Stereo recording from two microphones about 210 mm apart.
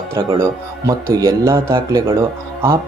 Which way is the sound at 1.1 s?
15° right (ahead or behind).